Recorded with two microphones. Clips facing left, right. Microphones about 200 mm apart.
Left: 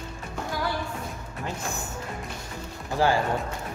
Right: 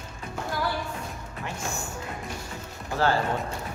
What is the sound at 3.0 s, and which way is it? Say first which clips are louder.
Speech: left 1 dB; 15° left (ahead or behind).